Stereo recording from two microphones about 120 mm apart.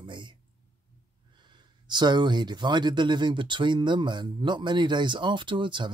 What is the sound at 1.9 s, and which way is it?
Speech, 40° right (ahead or behind).